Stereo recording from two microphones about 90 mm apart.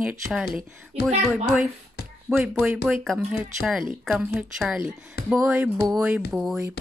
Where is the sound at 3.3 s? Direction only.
10° right (ahead or behind).